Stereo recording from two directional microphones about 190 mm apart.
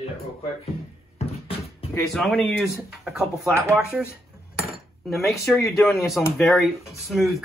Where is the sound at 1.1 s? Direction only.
30° left (ahead or behind).